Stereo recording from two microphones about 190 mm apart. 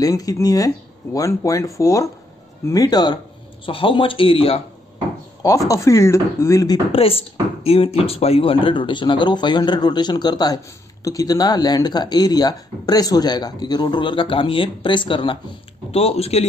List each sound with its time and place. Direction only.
0.0 s speech: 20° left (ahead or behind)
5.7 s speech: 15° left (ahead or behind); by 16.4 s 35° left (ahead or behind)